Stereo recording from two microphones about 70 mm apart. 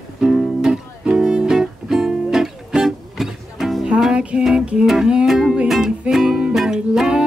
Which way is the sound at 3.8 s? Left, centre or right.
Centre.